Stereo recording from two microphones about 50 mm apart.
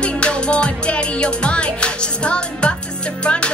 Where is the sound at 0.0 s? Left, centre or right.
Left.